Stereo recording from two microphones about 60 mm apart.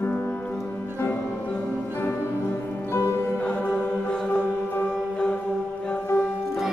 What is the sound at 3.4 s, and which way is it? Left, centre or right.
Music, left.